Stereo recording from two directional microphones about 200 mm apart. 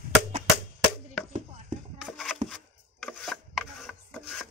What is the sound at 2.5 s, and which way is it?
Rub, centre (ahead or behind).